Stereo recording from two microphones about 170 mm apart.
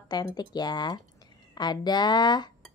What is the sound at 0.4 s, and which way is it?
A woman's voice, 25° left (ahead or behind).